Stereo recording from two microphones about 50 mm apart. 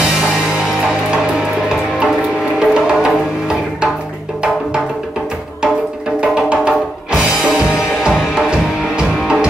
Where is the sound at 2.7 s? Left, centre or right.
Centre.